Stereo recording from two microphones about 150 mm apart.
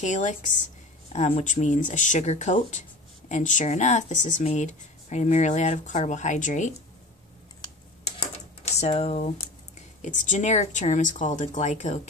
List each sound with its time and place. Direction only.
0.0 s speech: 55° left (ahead or behind)
8.7 s speech: 45° left (ahead or behind)